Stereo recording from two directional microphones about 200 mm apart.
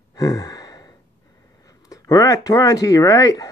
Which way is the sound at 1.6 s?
15° left (ahead or behind).